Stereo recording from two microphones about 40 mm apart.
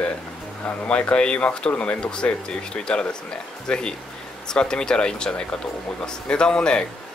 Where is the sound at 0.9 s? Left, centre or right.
Left.